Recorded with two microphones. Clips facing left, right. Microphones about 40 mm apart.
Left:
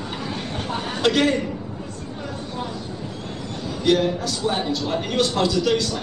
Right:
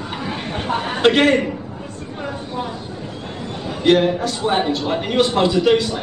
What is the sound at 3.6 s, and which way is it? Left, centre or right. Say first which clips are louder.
A man's voice: right 4 dB; right.